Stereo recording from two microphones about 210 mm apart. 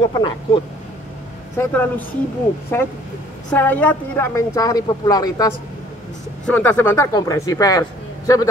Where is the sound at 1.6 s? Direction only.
10° left (ahead or behind).